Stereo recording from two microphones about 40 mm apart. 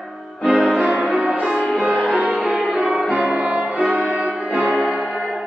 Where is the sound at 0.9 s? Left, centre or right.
Right.